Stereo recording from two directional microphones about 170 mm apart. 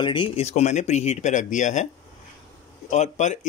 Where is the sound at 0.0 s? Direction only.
30° left (ahead or behind); by 1.9 s 45° left (ahead or behind).